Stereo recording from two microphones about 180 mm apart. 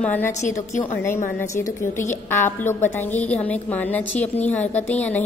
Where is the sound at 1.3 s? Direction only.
15° left (ahead or behind).